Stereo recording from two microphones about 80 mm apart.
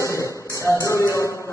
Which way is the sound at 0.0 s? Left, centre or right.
Left.